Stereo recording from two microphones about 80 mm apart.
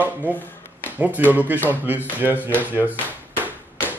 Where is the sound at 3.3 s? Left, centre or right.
Right.